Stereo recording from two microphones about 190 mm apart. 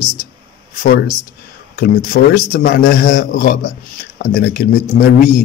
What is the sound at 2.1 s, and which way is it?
Speech, 55° left (ahead or behind).